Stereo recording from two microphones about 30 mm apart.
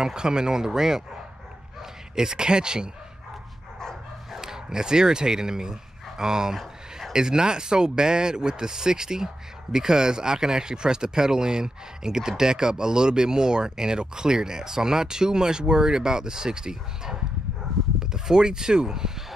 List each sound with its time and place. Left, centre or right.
0.0 s speech: right
4.4 s speech: centre